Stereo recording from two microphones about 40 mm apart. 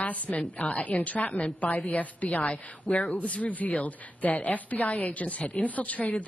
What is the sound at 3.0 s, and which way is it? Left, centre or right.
A woman's voice, left.